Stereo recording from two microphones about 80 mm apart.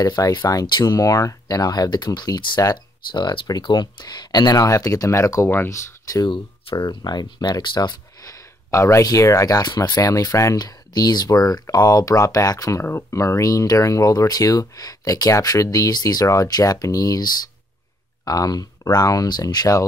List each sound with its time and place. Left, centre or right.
0.2 s speech: left
0.7 s speech: left
6.2 s speech: left
8.3 s a sound: left
9.0 s speech: left
12.8 s speech: left